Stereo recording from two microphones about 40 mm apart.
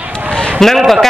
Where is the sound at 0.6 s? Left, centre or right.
Centre.